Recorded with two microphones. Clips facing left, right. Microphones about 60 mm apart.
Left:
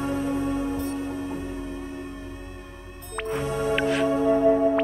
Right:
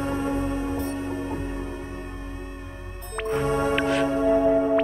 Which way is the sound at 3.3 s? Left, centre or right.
Right.